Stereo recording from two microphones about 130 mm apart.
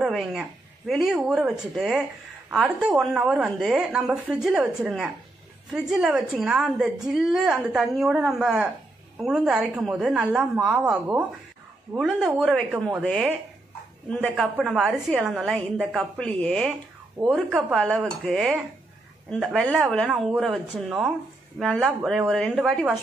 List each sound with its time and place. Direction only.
0.0 s a woman's voice: centre (ahead or behind)
14.3 s a woman's voice: centre (ahead or behind)
16.2 s speech: 10° left (ahead or behind)
17.3 s a woman's voice: 5° right (ahead or behind)